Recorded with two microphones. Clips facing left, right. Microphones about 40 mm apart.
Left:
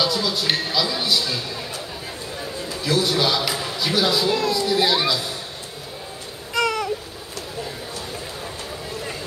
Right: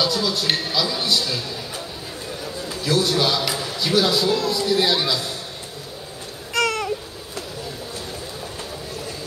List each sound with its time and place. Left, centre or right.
0.0 s speech: centre
2.8 s speech: centre
6.5 s a sound: centre